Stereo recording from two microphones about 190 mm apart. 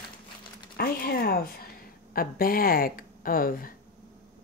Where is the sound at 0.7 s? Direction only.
55° left (ahead or behind).